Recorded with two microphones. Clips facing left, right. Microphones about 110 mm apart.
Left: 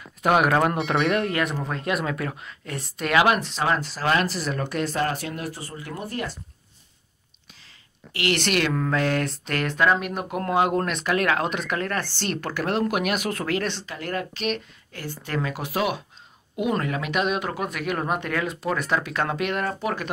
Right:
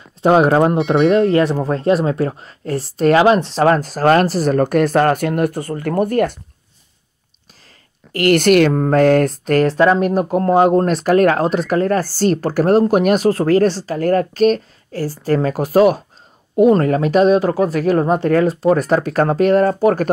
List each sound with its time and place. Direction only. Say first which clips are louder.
0.0 s speech: right 8 dB; 30° right (ahead or behind)
3.6 s speech: right 11 dB; 45° right (ahead or behind)
8.1 s speech: right 12 dB; 45° right (ahead or behind)